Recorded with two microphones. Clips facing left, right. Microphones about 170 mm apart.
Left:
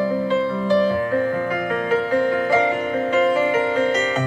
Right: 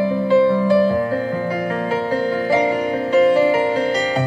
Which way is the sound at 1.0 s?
35° right (ahead or behind).